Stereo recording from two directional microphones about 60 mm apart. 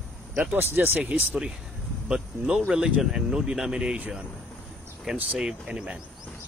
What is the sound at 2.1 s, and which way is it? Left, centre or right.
Speech, centre.